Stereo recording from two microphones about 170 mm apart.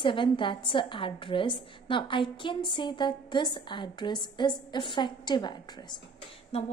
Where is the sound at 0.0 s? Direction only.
30° left (ahead or behind).